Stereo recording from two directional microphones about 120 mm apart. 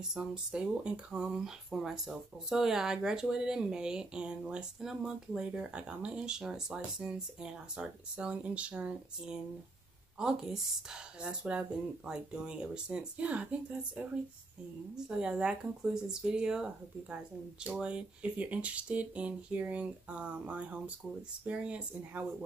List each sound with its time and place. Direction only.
0.1 s speech: 5° right (ahead or behind)